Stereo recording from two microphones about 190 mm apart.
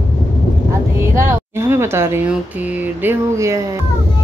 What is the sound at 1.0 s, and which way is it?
Speech, 10° right (ahead or behind).